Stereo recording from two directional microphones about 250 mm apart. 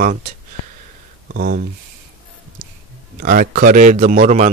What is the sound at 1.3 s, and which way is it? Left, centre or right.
Speech, right.